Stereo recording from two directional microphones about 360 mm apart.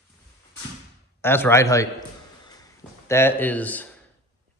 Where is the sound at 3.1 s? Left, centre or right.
Centre.